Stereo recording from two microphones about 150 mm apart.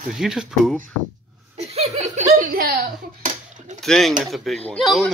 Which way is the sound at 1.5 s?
45° right (ahead or behind).